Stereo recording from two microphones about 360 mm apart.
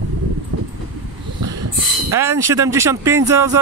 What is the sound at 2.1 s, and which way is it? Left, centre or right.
Speech, centre.